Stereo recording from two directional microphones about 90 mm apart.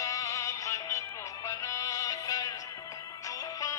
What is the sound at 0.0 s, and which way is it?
Music, 40° left (ahead or behind).